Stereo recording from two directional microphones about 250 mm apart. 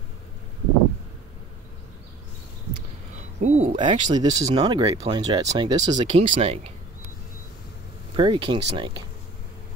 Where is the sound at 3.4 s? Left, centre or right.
Right.